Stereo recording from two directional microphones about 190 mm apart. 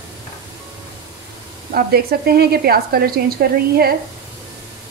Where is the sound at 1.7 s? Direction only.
55° right (ahead or behind).